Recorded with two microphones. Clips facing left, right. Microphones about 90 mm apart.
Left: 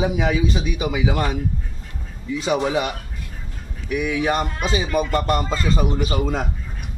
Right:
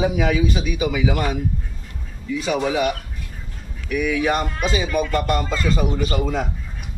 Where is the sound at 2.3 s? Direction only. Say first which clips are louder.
Left 1 dB; 25° left (ahead or behind).